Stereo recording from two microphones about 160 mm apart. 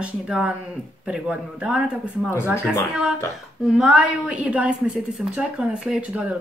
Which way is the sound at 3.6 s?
5° right (ahead or behind).